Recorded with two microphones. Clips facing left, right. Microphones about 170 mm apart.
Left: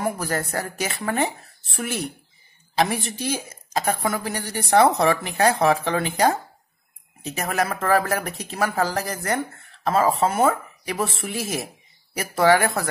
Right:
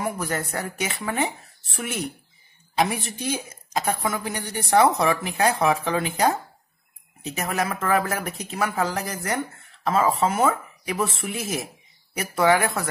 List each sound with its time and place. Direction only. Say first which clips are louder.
0.0 s a woman's voice: left 2 dB; 35° left (ahead or behind)